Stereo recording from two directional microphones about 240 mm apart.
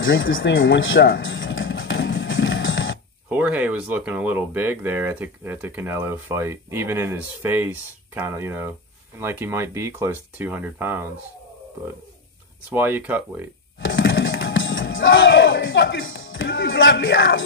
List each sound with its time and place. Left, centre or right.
0.0 s music: left
3.3 s speech: centre
12.6 s speech: centre
13.7 s music: left